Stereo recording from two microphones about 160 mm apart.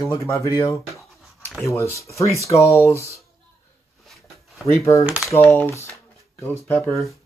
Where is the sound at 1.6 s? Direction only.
20° left (ahead or behind).